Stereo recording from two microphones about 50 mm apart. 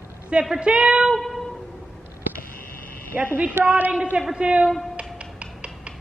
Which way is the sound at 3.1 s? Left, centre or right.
Right.